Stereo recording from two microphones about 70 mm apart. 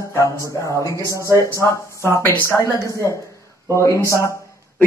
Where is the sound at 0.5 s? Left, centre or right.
Left.